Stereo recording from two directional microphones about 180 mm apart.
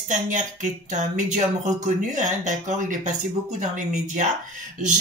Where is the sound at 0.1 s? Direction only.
45° right (ahead or behind).